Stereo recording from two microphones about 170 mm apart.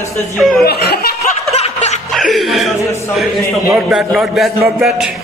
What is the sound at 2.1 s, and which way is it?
A man's voice, centre (ahead or behind).